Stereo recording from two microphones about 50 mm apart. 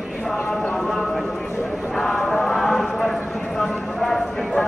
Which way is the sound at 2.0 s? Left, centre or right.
Centre.